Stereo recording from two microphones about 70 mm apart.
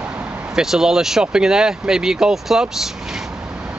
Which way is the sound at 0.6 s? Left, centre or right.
Centre.